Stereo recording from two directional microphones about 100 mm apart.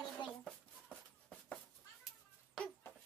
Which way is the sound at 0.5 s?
10° left (ahead or behind).